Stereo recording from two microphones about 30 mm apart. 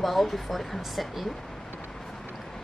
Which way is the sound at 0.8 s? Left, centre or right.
Centre.